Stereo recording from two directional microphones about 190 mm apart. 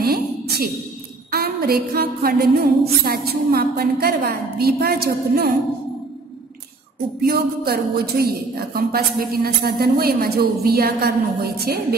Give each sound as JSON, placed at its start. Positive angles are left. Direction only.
{"t": 0.0, "sound": "a sound", "side_deg": -55}
{"t": 1.3, "sound": "a woman's voice", "side_deg": -55}
{"t": 7.2, "sound": "a woman's voice", "side_deg": -55}